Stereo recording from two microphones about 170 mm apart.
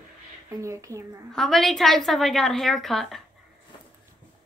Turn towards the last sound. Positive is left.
turn(degrees=0)  # may be behind; listen again after turning